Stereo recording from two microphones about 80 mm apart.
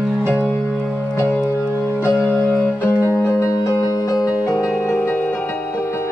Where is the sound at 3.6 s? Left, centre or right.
Left.